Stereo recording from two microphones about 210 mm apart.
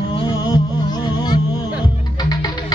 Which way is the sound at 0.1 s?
20° left (ahead or behind).